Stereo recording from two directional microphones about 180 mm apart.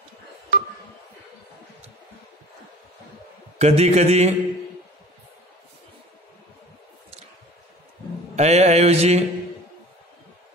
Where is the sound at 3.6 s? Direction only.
35° right (ahead or behind).